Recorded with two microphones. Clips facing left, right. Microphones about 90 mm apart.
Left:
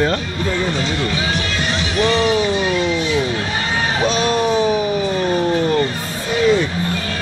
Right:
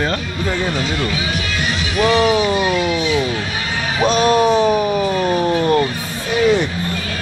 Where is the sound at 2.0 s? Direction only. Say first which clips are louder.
Right 2 dB; 10° right (ahead or behind).